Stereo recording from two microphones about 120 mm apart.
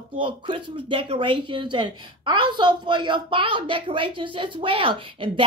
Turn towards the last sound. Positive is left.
turn(degrees=-45)  # may be behind; listen again after turning